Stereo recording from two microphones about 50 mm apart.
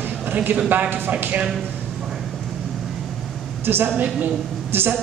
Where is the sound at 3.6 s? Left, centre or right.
Right.